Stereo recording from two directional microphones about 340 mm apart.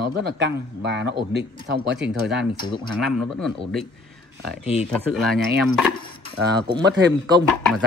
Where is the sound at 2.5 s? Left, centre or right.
Centre.